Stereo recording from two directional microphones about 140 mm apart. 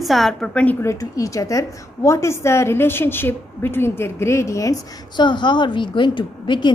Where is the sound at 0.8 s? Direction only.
20° left (ahead or behind).